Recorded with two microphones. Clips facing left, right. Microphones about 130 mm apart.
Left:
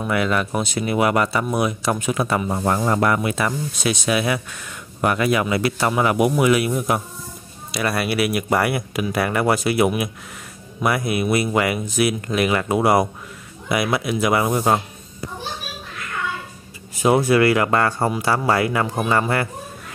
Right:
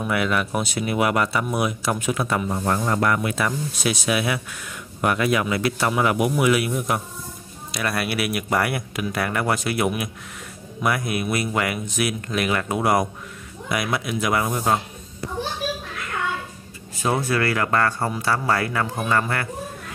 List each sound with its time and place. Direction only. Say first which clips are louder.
0.0 s speech: left 2 dB; centre (ahead or behind)
17.0 s speech: left 7 dB; 15° left (ahead or behind)